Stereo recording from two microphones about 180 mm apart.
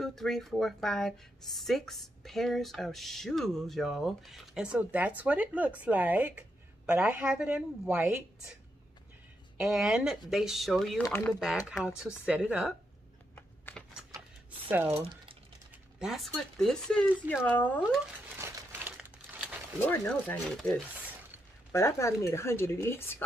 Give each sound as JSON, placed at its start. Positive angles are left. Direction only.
{"t": 0.0, "sound": "a woman's voice", "side_deg": 0}
{"t": 9.6, "sound": "speech", "side_deg": -5}
{"t": 13.3, "sound": "computer keyboard", "side_deg": 10}
{"t": 14.7, "sound": "a woman's voice", "side_deg": -10}
{"t": 15.0, "sound": "speech", "side_deg": -30}
{"t": 15.7, "sound": "speech", "side_deg": -5}
{"t": 18.3, "sound": "crumpling", "side_deg": -10}
{"t": 19.8, "sound": "speech", "side_deg": 10}
{"t": 21.7, "sound": "speech", "side_deg": 15}